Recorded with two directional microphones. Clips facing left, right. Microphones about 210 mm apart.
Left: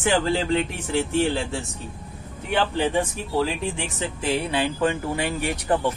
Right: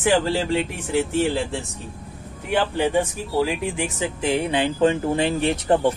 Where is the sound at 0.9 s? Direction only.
Centre (ahead or behind).